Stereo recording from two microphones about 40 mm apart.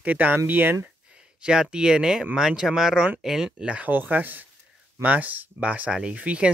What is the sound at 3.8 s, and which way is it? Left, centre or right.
Speech, right.